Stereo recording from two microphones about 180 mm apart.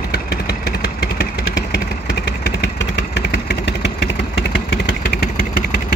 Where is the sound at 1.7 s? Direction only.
80° left.